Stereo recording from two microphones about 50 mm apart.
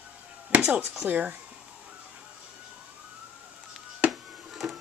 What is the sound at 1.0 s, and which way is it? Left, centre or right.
Speech, right.